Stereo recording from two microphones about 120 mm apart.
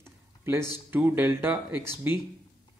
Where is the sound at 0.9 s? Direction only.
15° right (ahead or behind).